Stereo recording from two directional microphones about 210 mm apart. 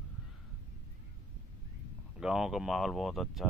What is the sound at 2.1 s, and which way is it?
Speech, 5° right (ahead or behind).